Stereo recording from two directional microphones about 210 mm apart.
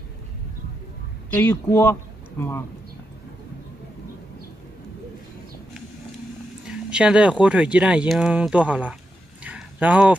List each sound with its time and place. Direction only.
1.3 s speech: 10° left (ahead or behind)
6.7 s speech: 5° right (ahead or behind)
9.4 s a sound: 5° right (ahead or behind)